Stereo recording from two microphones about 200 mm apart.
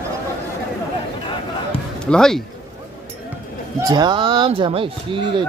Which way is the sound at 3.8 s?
20° right (ahead or behind).